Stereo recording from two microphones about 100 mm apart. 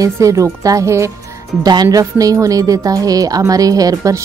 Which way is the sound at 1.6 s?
40° right (ahead or behind).